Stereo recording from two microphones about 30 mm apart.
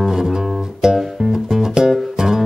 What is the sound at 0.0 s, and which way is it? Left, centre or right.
Music, centre.